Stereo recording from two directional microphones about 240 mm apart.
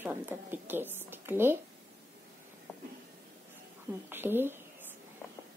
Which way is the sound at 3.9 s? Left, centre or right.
Centre.